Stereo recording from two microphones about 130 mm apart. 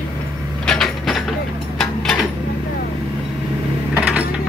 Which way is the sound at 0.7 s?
Centre (ahead or behind).